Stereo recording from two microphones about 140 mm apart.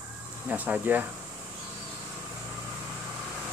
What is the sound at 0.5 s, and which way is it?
Speech, 10° right (ahead or behind).